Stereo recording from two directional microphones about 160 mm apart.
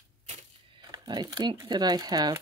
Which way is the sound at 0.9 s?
25° right (ahead or behind).